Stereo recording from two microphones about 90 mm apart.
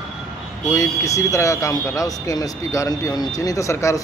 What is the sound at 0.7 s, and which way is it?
A man's voice, 35° left (ahead or behind).